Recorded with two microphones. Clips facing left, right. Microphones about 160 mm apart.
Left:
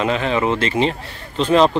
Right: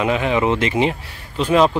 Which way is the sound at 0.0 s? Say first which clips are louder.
Right 1 dB; 10° right (ahead or behind).